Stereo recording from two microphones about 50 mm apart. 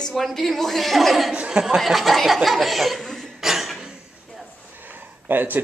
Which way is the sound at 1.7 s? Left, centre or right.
Centre.